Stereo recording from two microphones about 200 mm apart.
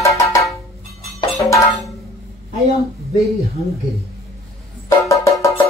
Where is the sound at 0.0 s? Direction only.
15° left (ahead or behind).